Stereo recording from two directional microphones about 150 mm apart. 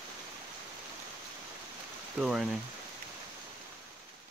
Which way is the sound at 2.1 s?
5° right (ahead or behind).